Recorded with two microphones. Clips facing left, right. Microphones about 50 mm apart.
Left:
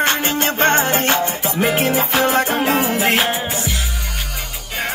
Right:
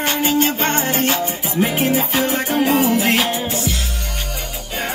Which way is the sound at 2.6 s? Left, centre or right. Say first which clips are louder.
Right 1 dB; left.